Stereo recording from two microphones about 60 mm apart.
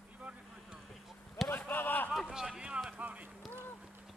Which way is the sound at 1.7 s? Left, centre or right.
Left.